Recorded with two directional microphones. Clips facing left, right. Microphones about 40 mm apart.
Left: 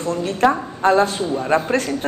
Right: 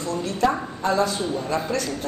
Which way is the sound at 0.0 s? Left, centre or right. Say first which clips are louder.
Left 5 dB; left.